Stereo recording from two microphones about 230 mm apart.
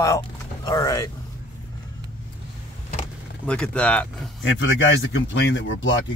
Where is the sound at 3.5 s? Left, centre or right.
Centre.